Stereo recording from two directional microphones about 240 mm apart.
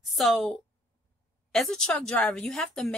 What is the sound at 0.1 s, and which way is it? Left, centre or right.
A woman's voice, centre.